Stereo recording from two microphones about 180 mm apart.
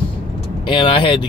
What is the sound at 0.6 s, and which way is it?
Speech, 25° left (ahead or behind).